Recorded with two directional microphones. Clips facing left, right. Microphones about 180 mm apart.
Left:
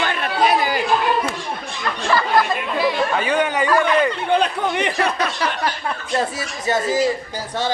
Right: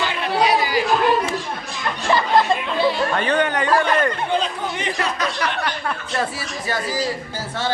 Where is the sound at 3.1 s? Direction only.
10° left (ahead or behind).